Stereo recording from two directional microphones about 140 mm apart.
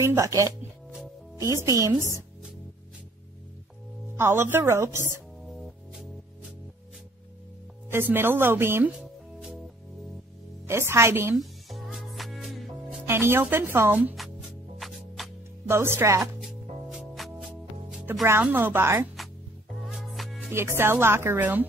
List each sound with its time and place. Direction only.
0.0 s a woman's voice: 20° right (ahead or behind)
4.2 s speech: 15° right (ahead or behind)
5.4 s music: 5° right (ahead or behind)
7.9 s speech: 15° right (ahead or behind)
10.7 s speech: 15° right (ahead or behind)
11.3 s music: centre (ahead or behind)
13.0 s speech: 15° right (ahead or behind)
14.1 s music: centre (ahead or behind)
15.7 s speech: 15° right (ahead or behind)
16.3 s music: 5° right (ahead or behind)
18.2 s speech: 15° right (ahead or behind)
19.7 s music: 5° right (ahead or behind)
20.5 s speech: 15° right (ahead or behind)